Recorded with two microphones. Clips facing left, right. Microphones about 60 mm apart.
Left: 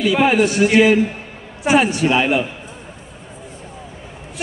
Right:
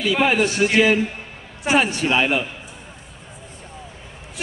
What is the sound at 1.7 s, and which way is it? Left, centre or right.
Speech, centre.